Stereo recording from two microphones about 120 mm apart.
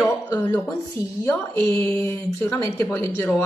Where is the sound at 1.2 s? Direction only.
25° left (ahead or behind).